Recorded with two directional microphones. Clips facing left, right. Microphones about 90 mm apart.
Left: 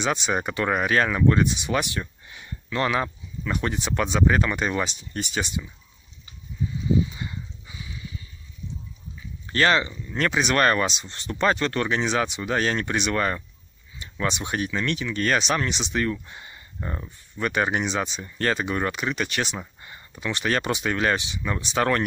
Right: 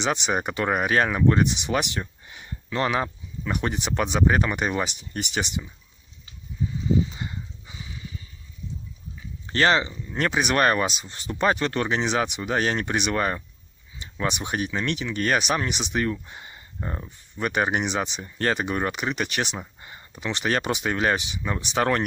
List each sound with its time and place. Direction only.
0.0 s speech: 20° right (ahead or behind)
7.2 s dog: 35° right (ahead or behind)
9.5 s speech: 25° right (ahead or behind)